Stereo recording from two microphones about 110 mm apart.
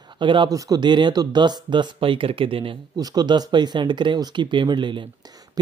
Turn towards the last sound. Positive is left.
turn(degrees=-45)  # may be behind; listen again after turning